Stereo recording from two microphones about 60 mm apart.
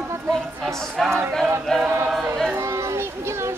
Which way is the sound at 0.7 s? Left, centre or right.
Centre.